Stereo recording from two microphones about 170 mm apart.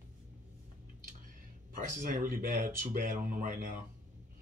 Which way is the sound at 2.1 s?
55° right (ahead or behind).